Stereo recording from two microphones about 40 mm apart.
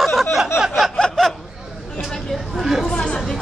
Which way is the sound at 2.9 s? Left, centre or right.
Left.